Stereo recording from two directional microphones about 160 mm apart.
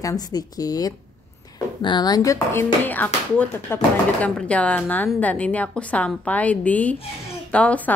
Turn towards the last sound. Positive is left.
turn(degrees=10)  # may be behind; listen again after turning